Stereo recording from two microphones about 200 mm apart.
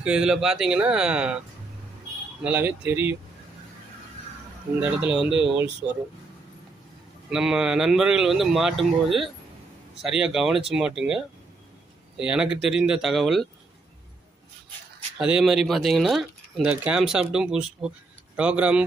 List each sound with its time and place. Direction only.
0.0 s speech: 5° right (ahead or behind)
2.4 s speech: 5° right (ahead or behind)
4.7 s speech: 5° right (ahead or behind)
7.2 s speech: 5° right (ahead or behind)
15.1 s speech: 5° right (ahead or behind)